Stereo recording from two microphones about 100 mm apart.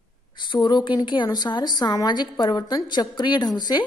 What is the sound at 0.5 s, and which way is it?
A woman's voice, 45° left (ahead or behind).